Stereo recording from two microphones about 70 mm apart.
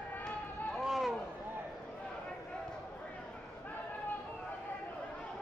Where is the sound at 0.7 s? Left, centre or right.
Centre.